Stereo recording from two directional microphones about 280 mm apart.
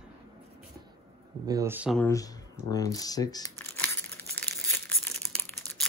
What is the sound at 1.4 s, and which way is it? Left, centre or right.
Speech, centre.